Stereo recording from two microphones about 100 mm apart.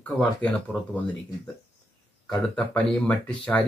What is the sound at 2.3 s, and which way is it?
Speech, 5° left (ahead or behind).